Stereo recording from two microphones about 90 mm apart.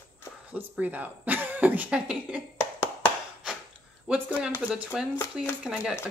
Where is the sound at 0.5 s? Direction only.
15° right (ahead or behind).